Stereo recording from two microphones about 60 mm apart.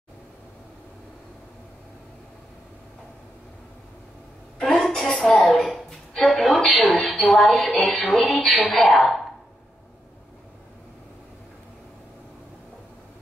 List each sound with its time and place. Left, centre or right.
4.6 s a sound: centre
7.2 s a woman's voice: centre
7.8 s music: centre
8.1 s a woman's voice: centre